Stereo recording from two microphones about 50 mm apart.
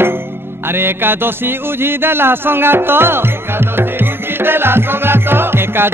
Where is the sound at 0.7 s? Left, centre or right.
Right.